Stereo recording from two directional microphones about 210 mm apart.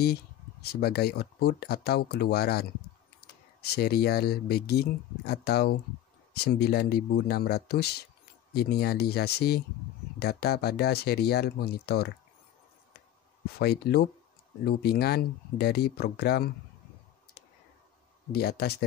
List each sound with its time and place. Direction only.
0.0 s speech: 50° left (ahead or behind)
13.6 s speech: 50° left (ahead or behind)
18.3 s speech: 50° left (ahead or behind)